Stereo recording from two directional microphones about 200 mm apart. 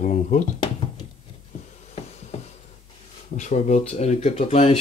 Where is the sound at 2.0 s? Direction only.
30° left (ahead or behind).